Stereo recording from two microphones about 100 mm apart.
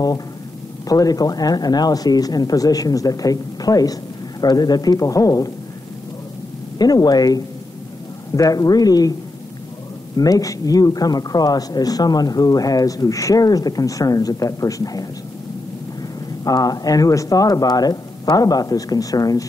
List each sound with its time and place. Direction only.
0.8 s speech: 40° left (ahead or behind)
6.8 s speech: 40° left (ahead or behind)
10.1 s speech: 35° left (ahead or behind)
16.4 s speech: 40° left (ahead or behind)